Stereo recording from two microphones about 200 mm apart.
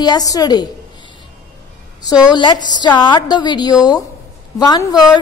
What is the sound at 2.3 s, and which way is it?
A woman's voice, 20° left (ahead or behind).